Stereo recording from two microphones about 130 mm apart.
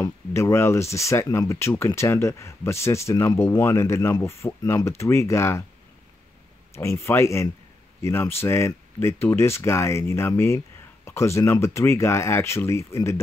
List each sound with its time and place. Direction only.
0.3 s speech: 20° left (ahead or behind)
6.7 s speech: 20° left (ahead or behind)